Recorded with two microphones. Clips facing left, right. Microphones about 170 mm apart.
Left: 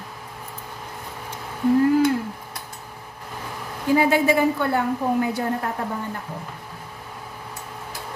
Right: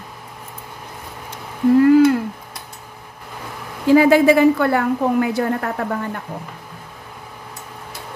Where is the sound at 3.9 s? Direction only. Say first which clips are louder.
Right 7 dB; 90° right.